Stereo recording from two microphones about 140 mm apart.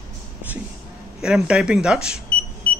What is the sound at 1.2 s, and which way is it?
Speech, 5° right (ahead or behind).